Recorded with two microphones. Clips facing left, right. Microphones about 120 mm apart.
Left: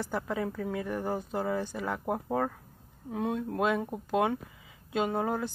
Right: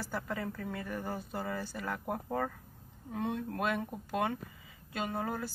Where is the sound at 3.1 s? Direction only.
10° left (ahead or behind).